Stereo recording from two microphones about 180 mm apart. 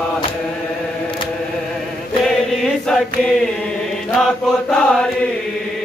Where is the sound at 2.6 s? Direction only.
5° left (ahead or behind).